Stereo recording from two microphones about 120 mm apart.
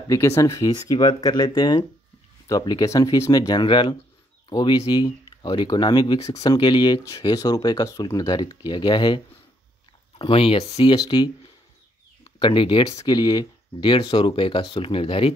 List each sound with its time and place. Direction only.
0.4 s speech: 30° left (ahead or behind); by 10.7 s 50° left (ahead or behind)
11.0 s speech: 40° left (ahead or behind)
12.4 s speech: 40° left (ahead or behind)